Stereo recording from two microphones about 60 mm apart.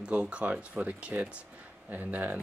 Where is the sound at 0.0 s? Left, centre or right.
Centre.